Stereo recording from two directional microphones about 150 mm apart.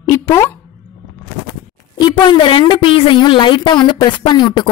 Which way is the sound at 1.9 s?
30° left (ahead or behind).